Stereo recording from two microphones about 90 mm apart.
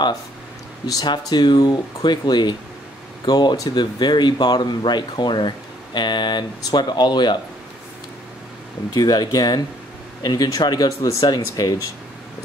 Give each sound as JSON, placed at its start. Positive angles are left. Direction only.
{"t": 0.8, "sound": "speech", "side_deg": 50}
{"t": 8.9, "sound": "speech", "side_deg": 45}